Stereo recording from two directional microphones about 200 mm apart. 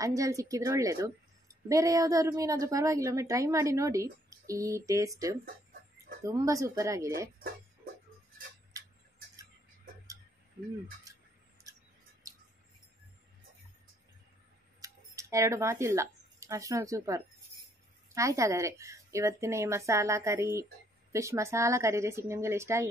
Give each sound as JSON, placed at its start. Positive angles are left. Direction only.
{"t": 0.0, "sound": "a woman's voice", "side_deg": -15}
{"t": 5.4, "sound": "chicken", "side_deg": -45}
{"t": 6.2, "sound": "a woman's voice", "side_deg": -15}
{"t": 12.2, "sound": "a sound", "side_deg": -15}
{"t": 14.8, "sound": "a woman's voice", "side_deg": -15}